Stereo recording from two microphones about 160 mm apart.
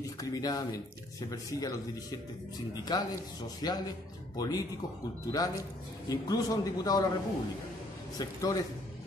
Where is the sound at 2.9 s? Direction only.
25° left (ahead or behind).